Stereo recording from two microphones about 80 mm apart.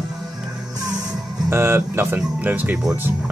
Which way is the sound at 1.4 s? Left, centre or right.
Right.